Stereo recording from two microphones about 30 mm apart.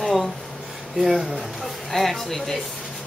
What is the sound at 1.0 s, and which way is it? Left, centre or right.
Speech, centre.